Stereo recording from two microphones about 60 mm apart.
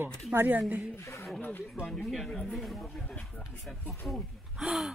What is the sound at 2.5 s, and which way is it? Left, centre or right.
Speech, centre.